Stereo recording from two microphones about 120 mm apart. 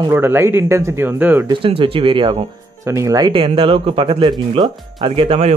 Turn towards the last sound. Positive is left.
turn(degrees=-55)  # may be behind; listen again after turning